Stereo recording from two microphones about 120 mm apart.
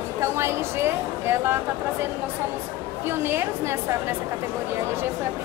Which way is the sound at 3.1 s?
20° right (ahead or behind).